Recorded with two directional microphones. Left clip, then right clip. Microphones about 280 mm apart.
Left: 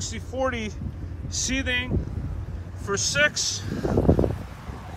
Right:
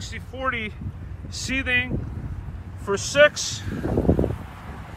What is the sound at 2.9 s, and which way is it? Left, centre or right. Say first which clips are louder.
Speech: right 5 dB; centre.